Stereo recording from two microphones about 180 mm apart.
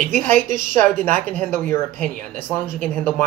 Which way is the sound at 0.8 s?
10° left (ahead or behind).